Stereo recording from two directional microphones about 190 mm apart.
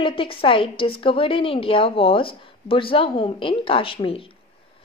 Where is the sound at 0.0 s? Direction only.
25° left (ahead or behind).